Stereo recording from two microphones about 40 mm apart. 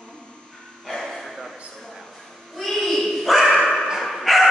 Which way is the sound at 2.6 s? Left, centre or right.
Centre.